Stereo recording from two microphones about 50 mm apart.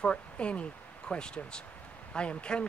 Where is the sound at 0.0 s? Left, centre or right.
Left.